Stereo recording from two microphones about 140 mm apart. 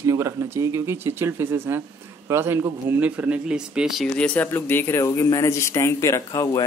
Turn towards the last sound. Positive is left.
turn(degrees=25)  # may be behind; listen again after turning